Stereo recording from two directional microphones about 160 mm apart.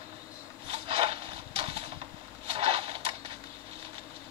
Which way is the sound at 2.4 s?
40° right (ahead or behind).